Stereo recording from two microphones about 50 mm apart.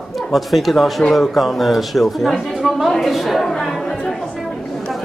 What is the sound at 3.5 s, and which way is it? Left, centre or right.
Chatter, centre.